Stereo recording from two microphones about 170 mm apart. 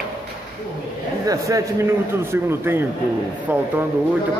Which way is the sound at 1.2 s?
20° right (ahead or behind).